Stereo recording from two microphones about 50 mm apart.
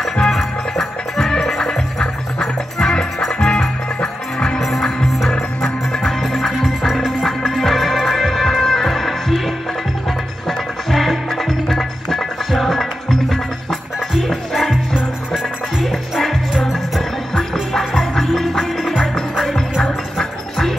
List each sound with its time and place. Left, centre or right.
0.0 s music: centre
4.6 s music: centre
10.9 s music: centre
15.9 s music: centre